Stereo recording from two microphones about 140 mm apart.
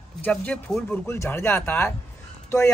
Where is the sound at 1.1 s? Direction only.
15° left (ahead or behind).